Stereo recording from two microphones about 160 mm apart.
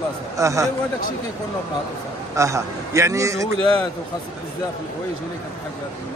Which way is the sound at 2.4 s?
20° right (ahead or behind).